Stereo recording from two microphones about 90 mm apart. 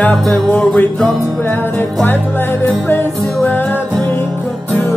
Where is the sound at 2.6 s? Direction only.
25° left (ahead or behind).